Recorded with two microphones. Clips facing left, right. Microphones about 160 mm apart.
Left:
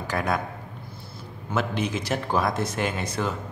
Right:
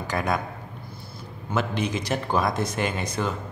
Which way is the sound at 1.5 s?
5° left (ahead or behind).